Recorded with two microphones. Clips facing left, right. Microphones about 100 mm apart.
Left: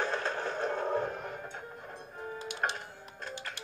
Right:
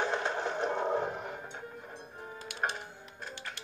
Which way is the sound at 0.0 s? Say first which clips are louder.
Right 1 dB; 20° right (ahead or behind).